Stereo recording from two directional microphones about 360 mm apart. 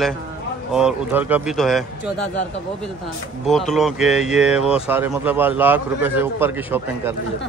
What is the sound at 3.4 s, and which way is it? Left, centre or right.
Speech, centre.